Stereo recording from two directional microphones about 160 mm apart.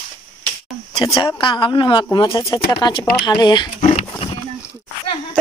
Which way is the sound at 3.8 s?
40° left (ahead or behind).